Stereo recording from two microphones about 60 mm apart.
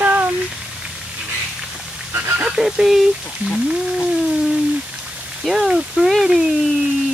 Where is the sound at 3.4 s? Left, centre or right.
Centre.